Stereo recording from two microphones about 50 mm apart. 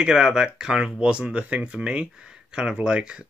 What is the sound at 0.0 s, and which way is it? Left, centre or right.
Speech, centre.